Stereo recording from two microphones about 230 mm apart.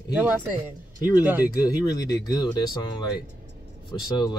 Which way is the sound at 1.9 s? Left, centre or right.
Centre.